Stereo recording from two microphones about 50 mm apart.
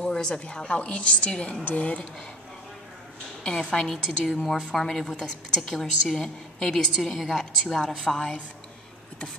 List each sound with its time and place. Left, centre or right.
0.0 s a woman's voice: centre
1.6 s speech: left
3.4 s a woman's voice: centre
3.8 s a woman's voice: centre
5.0 s a woman's voice: centre
5.7 s a woman's voice: centre